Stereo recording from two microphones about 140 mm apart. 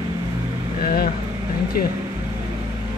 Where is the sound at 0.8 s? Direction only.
90° left.